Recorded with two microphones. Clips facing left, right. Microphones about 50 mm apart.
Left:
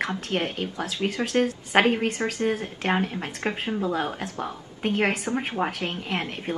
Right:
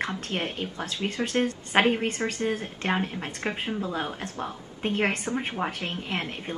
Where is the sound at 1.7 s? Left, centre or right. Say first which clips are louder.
Left 2 dB; centre.